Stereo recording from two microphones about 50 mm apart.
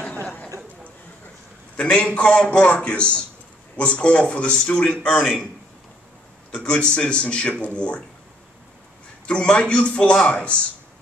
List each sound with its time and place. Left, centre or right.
1.8 s a man's voice: left
6.5 s a man's voice: left
9.2 s a man's voice: left